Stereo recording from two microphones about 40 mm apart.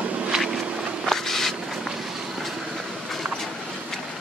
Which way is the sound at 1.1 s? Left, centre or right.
Centre.